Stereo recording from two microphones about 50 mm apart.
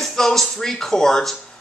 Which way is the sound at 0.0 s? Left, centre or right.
Centre.